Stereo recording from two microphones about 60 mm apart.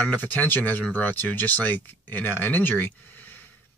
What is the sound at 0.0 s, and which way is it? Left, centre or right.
Speech, left.